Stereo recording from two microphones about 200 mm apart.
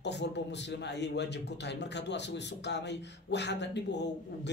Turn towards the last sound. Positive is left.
turn(degrees=60)  # may be behind; listen again after turning